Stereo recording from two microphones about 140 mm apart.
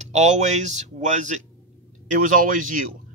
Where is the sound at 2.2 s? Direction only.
70° right (ahead or behind).